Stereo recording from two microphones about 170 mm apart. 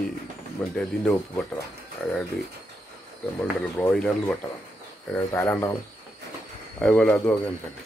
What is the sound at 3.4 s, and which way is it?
Speech, 10° left (ahead or behind).